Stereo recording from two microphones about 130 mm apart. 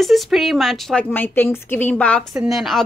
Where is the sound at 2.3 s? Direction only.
Centre (ahead or behind).